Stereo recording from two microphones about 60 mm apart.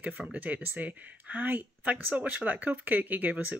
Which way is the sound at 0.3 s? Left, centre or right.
Right.